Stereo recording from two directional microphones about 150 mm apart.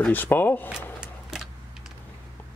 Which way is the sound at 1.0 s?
5° right (ahead or behind).